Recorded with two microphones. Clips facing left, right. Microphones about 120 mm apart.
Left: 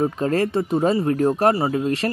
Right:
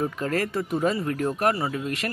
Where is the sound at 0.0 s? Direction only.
30° left (ahead or behind).